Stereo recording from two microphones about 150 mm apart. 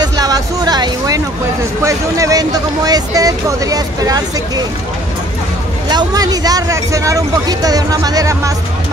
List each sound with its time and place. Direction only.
0.0 s music: 25° right (ahead or behind)
1.8 s speech: 20° right (ahead or behind)
5.9 s speech: 25° right (ahead or behind)